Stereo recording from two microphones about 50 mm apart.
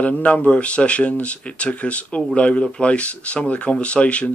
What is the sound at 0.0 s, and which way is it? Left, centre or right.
Speech, left.